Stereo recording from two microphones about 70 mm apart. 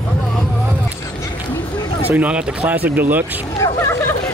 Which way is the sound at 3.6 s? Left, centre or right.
Left.